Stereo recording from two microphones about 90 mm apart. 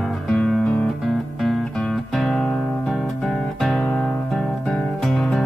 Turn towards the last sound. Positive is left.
turn(degrees=0)  # may be behind; listen again after turning